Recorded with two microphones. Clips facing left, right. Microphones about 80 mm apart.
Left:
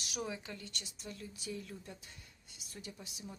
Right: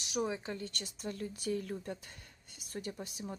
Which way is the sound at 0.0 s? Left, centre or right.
Right.